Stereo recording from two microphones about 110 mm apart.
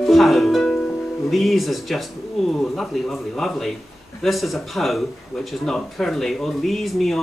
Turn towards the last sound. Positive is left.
turn(degrees=0)  # may be behind; listen again after turning